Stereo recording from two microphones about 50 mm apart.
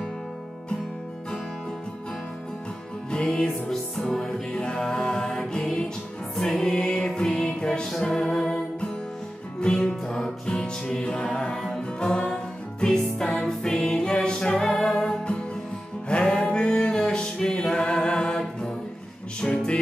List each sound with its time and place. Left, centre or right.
3.1 s music: centre
12.1 s music: left
13.3 s music: centre
17.6 s chant: centre
19.4 s music: centre